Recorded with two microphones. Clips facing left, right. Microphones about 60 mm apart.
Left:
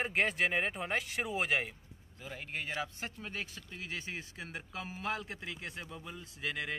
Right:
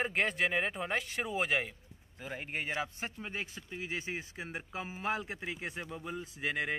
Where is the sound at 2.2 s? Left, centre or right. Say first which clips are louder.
Right 3 dB; right.